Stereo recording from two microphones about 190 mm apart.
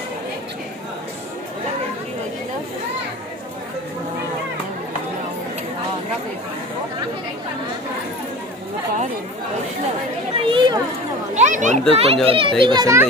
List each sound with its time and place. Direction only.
10.3 s children playing: 25° right (ahead or behind)
11.3 s chatter: 40° right (ahead or behind)
11.9 s a child's voice: 30° right (ahead or behind)